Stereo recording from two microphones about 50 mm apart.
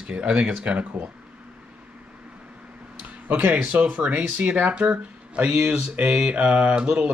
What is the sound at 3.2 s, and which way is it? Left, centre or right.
Speech, right.